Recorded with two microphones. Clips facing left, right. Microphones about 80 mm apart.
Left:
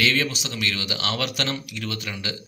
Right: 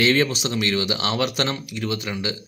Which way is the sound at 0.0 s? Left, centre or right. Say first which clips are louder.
Right 4 dB; right.